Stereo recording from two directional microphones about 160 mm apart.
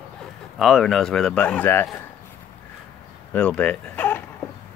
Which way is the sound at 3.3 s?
5° left (ahead or behind).